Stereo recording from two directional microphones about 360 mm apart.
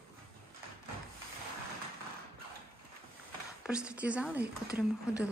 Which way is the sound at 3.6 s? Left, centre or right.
Centre.